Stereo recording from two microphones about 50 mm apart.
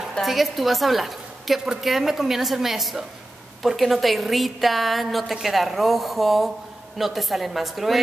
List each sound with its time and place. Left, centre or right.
0.2 s a woman's voice: centre